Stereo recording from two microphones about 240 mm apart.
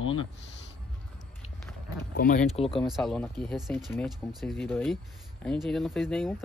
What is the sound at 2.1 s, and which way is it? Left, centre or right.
Speech, left.